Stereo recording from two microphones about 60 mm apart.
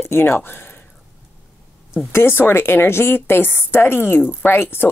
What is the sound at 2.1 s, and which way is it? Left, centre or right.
Speech, left.